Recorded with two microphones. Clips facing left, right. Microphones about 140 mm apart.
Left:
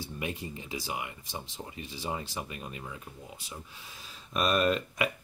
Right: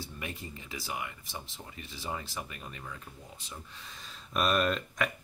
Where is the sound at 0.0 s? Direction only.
15° left (ahead or behind).